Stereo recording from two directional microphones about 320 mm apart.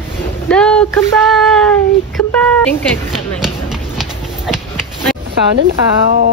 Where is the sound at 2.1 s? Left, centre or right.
Centre.